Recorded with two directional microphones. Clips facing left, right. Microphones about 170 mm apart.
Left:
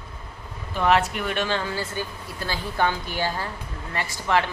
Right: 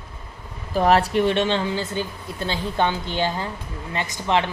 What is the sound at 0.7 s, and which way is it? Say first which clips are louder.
Speech: right 3 dB; 35° right (ahead or behind).